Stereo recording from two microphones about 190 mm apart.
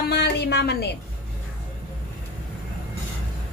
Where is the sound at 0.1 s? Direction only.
60° left (ahead or behind).